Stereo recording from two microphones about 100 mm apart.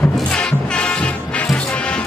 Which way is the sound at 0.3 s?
10° left (ahead or behind).